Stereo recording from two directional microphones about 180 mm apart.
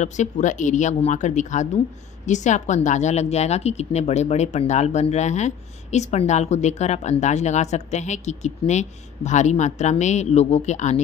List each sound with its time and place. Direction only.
0.0 s a woman's voice: 40° left (ahead or behind)